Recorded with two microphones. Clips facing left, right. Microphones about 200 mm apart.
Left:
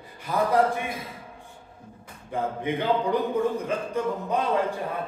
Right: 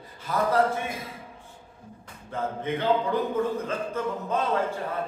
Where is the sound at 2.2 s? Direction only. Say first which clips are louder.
Left 2 dB; 15° left (ahead or behind).